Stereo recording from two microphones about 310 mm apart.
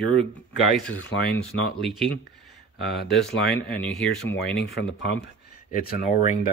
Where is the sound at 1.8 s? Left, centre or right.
Centre.